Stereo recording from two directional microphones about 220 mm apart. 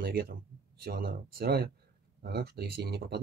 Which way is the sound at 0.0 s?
45° right (ahead or behind).